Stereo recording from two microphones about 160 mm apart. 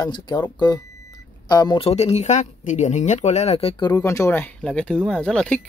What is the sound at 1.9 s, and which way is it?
Speech, 40° left (ahead or behind).